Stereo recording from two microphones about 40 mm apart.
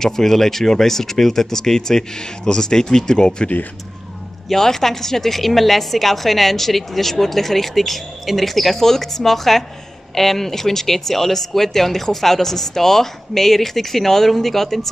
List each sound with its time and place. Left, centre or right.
0.0 s speech: centre
4.5 s a woman's voice: centre